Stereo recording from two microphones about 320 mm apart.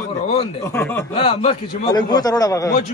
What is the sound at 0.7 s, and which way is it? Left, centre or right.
Speech, centre.